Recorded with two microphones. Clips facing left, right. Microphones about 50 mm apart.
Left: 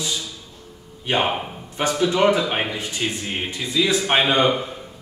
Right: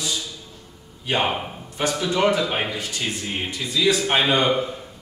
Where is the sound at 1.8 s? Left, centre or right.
Centre.